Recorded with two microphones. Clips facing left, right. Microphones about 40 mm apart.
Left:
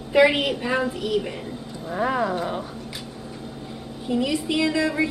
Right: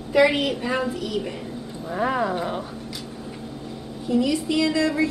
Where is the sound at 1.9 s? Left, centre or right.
Centre.